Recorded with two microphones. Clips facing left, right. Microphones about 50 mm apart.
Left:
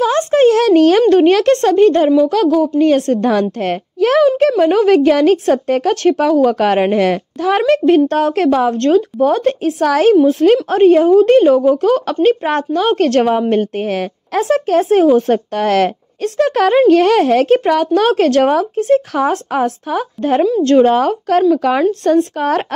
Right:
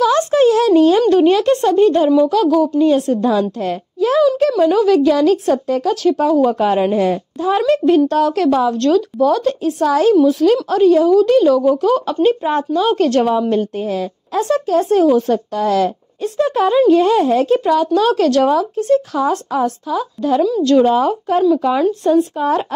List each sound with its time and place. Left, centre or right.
0.0 s a sound: left
1.0 s speech: left
4.4 s a woman's voice: left
7.6 s speech: left
9.7 s a woman's voice: left
10.2 s a woman's voice: left
20.6 s speech: left
22.0 s a woman's voice: left